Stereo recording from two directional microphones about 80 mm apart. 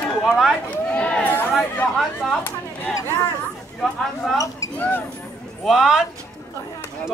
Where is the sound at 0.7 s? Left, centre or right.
Centre.